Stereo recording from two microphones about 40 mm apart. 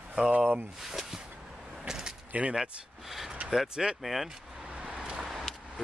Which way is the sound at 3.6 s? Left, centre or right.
Centre.